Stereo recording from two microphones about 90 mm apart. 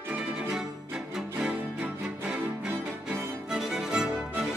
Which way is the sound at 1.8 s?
20° right (ahead or behind).